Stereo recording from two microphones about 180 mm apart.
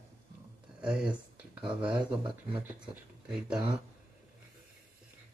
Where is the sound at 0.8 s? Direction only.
5° right (ahead or behind).